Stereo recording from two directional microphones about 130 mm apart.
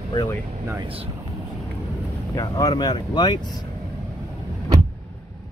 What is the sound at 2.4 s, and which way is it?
Speech, 30° left (ahead or behind).